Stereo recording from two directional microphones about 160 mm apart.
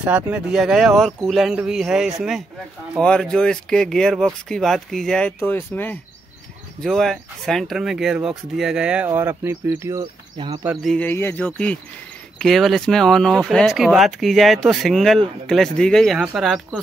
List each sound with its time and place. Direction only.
0.0 s speech: 10° right (ahead or behind); by 5.9 s 10° left (ahead or behind)
6.8 s speech: centre (ahead or behind); by 10.0 s 20° right (ahead or behind)
10.3 s speech: 30° right (ahead or behind)
10.6 s a sound: 10° right (ahead or behind)
10.9 s speech: 10° left (ahead or behind)